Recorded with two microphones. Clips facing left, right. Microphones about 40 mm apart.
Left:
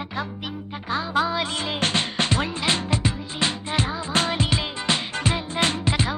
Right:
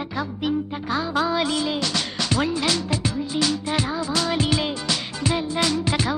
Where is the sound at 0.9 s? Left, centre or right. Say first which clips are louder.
Even; centre.